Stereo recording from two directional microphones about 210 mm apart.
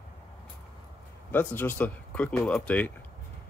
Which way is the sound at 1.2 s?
10° left (ahead or behind).